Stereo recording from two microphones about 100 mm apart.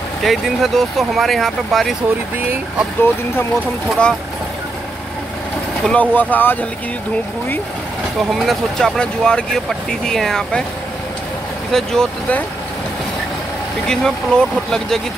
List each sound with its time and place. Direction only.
0.2 s speech: centre (ahead or behind)
3.0 s speech: 20° left (ahead or behind)
5.9 s speech: 15° left (ahead or behind)
8.2 s speech: centre (ahead or behind)
11.7 s speech: 5° left (ahead or behind)
13.8 s speech: 5° left (ahead or behind)